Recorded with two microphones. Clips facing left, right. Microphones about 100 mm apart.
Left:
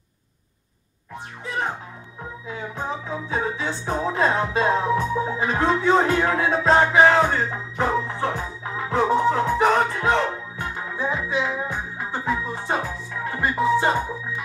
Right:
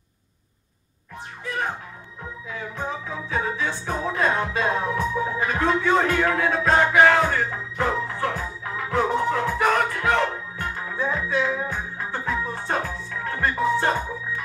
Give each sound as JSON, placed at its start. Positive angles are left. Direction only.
{"t": 2.4, "sound": "music", "side_deg": 25}